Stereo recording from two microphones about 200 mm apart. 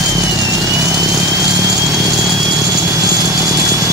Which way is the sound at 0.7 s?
15° right (ahead or behind).